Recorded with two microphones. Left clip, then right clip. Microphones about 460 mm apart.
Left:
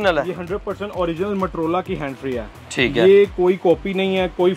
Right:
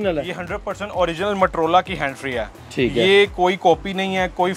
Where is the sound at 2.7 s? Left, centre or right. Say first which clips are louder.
Left 1 dB; left.